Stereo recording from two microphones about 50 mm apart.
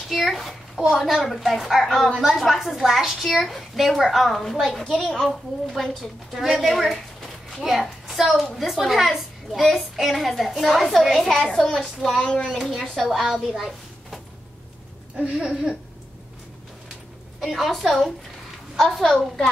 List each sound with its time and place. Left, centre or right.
0.1 s a child's voice: centre
13.2 s a woman's voice: centre
15.1 s a sound: right
17.4 s a child's voice: centre